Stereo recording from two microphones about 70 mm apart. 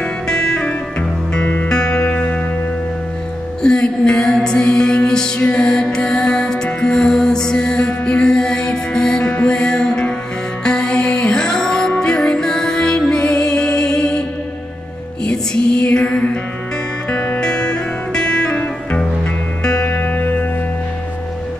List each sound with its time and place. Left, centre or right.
0.0 s music: centre
1.4 s music: left
1.7 s music: centre
3.6 s music: centre
5.4 s music: left
5.7 s music: centre
15.8 s music: centre